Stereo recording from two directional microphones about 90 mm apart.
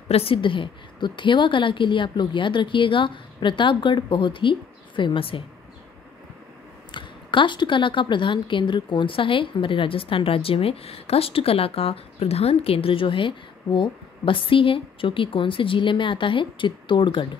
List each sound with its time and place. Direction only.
0.1 s a woman's voice: 90° left; by 5.4 s 70° left (ahead or behind)
6.9 s speech: 65° left (ahead or behind)